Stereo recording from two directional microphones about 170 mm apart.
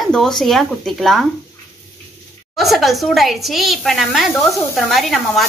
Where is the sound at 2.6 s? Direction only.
Centre (ahead or behind).